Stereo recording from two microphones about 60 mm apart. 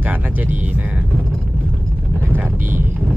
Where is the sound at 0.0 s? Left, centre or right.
Right.